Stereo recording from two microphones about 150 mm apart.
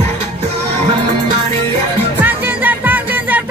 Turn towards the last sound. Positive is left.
turn(degrees=-10)  # may be behind; listen again after turning